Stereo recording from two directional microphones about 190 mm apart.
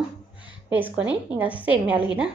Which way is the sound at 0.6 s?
10° right (ahead or behind).